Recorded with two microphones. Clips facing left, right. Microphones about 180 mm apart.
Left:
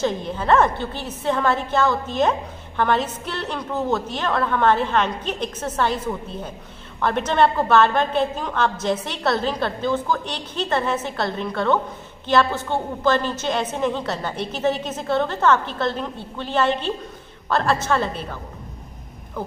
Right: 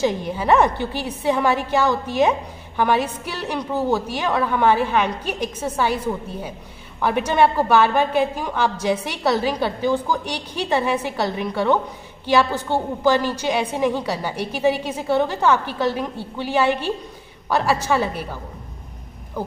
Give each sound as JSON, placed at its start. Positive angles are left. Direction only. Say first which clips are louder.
{"t": 0.0, "sound": "a woman's voice", "louder": "right 2 dB", "side_deg": -10}
{"t": 7.0, "sound": "a woman's voice", "louder": "right 1 dB", "side_deg": -10}